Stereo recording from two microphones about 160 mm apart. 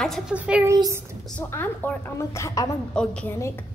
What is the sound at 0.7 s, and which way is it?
Speech, 20° right (ahead or behind).